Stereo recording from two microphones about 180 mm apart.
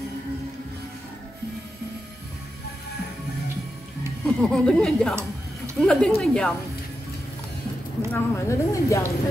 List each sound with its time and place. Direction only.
4.4 s speech: 5° left (ahead or behind)
8.1 s speech: 15° left (ahead or behind)